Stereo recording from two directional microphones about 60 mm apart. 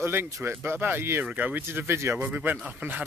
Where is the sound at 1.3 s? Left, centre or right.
Right.